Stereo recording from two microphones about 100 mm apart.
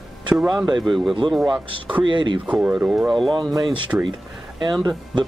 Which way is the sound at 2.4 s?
10° right (ahead or behind).